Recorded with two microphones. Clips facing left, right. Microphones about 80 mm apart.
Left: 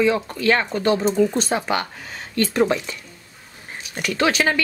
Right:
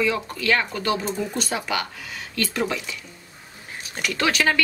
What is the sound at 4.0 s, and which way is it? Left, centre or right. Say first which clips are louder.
Speech: left 3 dB; left.